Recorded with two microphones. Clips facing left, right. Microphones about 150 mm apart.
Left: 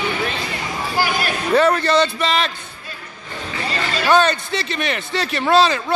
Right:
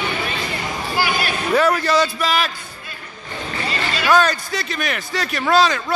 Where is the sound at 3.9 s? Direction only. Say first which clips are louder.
Left 1 dB; 35° left (ahead or behind).